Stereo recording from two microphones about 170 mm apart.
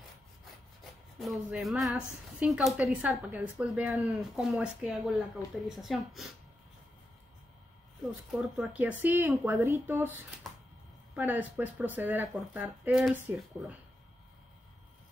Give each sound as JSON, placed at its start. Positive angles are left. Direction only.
{"t": 1.2, "sound": "speech", "side_deg": 0}
{"t": 8.3, "sound": "speech", "side_deg": -5}
{"t": 11.1, "sound": "speech", "side_deg": -10}